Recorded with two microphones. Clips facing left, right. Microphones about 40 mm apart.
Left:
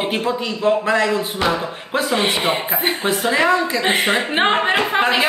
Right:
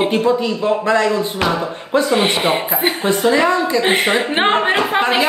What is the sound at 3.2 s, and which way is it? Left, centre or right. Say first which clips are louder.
Speech: right 2 dB; centre.